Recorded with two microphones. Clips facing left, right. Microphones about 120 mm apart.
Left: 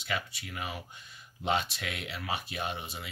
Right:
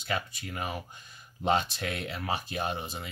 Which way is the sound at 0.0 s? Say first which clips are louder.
Right 2 dB; 45° right (ahead or behind).